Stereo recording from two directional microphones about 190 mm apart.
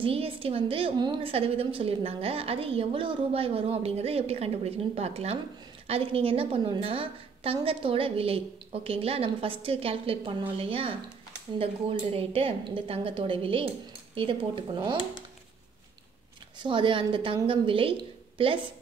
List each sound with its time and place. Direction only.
0.0 s a woman's voice: 30° right (ahead or behind)
16.5 s a woman's voice: 25° right (ahead or behind)